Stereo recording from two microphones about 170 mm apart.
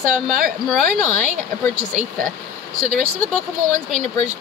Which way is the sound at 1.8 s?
50° right (ahead or behind).